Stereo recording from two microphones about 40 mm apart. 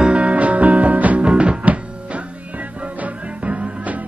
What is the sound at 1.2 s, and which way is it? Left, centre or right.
Music, right.